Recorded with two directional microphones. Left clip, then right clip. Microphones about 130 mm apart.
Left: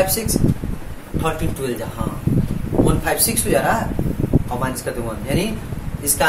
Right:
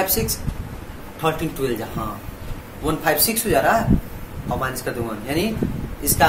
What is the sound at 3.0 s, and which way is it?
Speech, 55° right (ahead or behind).